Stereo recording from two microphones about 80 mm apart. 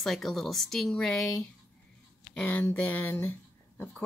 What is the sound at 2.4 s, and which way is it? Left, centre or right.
Speech, left.